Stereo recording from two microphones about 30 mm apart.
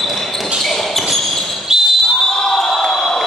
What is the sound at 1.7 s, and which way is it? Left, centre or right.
Basketball bounce, centre.